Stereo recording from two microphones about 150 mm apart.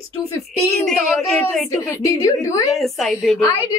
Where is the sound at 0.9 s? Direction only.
Centre (ahead or behind).